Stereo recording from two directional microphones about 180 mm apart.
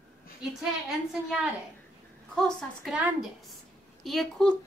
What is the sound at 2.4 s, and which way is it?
A woman's voice, centre (ahead or behind).